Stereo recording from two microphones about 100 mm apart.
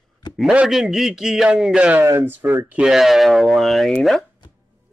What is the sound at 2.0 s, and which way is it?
Speech, 25° right (ahead or behind).